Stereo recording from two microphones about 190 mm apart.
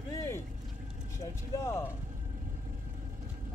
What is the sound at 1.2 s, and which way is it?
Speech, 15° left (ahead or behind).